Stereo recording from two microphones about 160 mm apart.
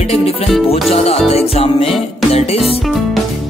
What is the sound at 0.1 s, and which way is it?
Music, 40° left (ahead or behind).